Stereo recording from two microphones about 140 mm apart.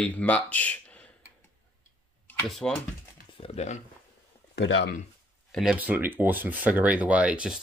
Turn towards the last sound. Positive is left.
turn(degrees=-10)  # may be behind; listen again after turning